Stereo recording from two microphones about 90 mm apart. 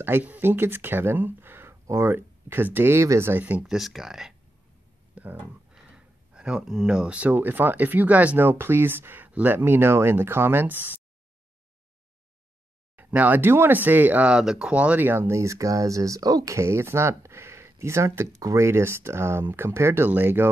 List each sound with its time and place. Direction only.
0.0 s speech: 20° right (ahead or behind)
3.6 s speech: 5° right (ahead or behind)
5.1 s speech: 15° right (ahead or behind)
12.9 s speech: 20° right (ahead or behind); by 16.5 s 45° right (ahead or behind)
16.5 s speech: 30° right (ahead or behind)